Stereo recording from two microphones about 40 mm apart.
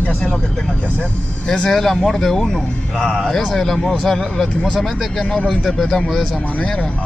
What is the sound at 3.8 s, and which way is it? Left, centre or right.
Speech, left.